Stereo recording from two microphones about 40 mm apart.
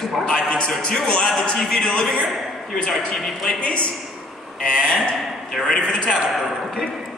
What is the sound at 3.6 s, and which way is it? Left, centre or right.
Speech, left.